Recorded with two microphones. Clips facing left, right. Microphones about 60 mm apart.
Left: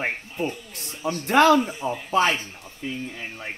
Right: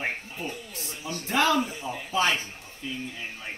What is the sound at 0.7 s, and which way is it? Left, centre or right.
Speech, left.